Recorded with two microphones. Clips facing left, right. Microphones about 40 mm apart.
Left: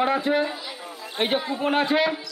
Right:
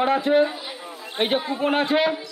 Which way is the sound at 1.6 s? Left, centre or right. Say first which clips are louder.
Right 1 dB; centre.